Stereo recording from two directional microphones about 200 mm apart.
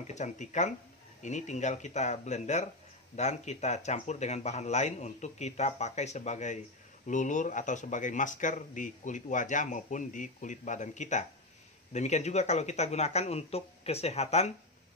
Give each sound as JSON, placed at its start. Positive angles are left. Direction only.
{"t": 0.0, "sound": "speech", "side_deg": 35}